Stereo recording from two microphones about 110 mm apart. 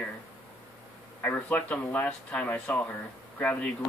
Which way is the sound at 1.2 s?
15° left (ahead or behind).